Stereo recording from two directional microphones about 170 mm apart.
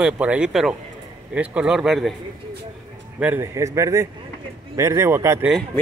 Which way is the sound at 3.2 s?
15° right (ahead or behind).